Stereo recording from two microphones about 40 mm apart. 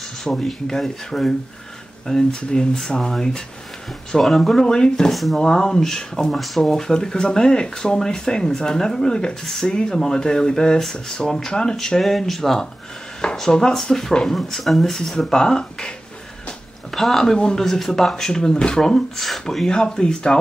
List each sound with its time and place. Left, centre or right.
0.2 s speech: centre
5.1 s speech: centre
5.4 s speech: centre
6.3 s speech: centre
16.9 s speech: centre
19.6 s speech: left